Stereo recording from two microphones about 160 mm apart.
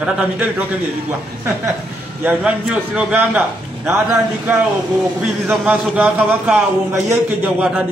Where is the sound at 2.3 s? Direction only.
10° right (ahead or behind).